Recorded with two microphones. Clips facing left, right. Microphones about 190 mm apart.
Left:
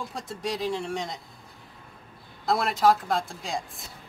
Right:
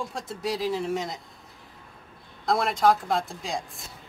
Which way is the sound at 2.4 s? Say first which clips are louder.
Even; centre (ahead or behind).